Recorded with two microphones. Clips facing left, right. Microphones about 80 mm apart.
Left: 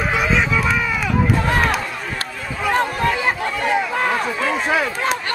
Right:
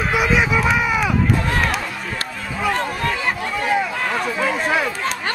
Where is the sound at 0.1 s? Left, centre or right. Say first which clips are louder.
Right 2 dB; centre.